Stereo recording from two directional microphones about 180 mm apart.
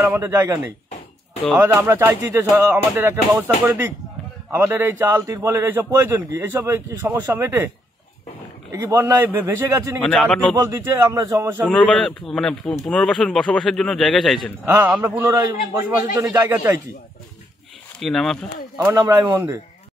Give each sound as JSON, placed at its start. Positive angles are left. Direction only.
{"t": 0.0, "sound": "a man's voice", "side_deg": -15}
{"t": 8.7, "sound": "a man's voice", "side_deg": -15}
{"t": 10.0, "sound": "a man's voice", "side_deg": 5}
{"t": 10.5, "sound": "a man's voice", "side_deg": -20}
{"t": 11.6, "sound": "a man's voice", "side_deg": 5}
{"t": 14.7, "sound": "a man's voice", "side_deg": -10}
{"t": 17.9, "sound": "speech", "side_deg": 0}
{"t": 18.9, "sound": "a man's voice", "side_deg": -10}